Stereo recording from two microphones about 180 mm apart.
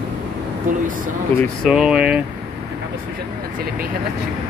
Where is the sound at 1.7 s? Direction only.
5° right (ahead or behind).